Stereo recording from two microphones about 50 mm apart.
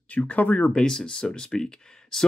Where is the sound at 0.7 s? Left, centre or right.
Centre.